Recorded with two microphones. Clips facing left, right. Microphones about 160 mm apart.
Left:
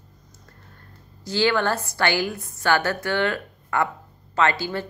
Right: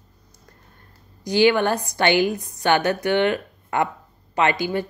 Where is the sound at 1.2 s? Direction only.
15° right (ahead or behind).